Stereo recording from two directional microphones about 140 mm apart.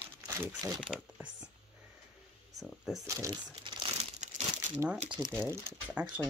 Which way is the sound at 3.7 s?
35° right (ahead or behind).